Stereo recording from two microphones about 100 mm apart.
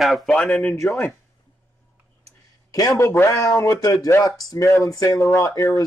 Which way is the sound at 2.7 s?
35° left (ahead or behind).